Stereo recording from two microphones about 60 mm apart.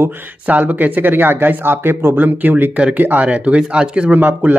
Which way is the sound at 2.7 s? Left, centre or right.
Centre.